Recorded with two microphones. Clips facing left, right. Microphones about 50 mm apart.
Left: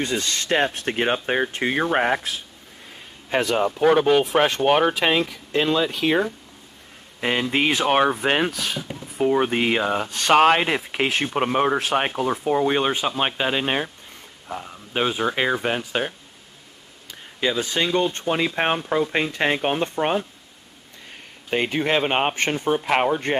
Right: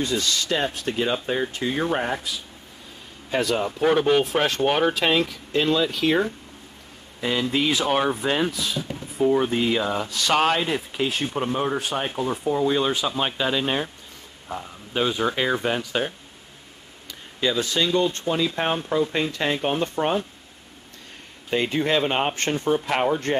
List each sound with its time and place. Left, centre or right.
0.0 s speech: left
3.4 s speech: left
7.2 s speech: left
10.6 s speech: left
14.5 s speech: centre
17.1 s speech: left
21.5 s speech: left